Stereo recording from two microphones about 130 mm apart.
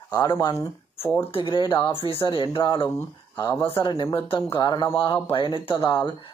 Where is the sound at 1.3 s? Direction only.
40° left (ahead or behind).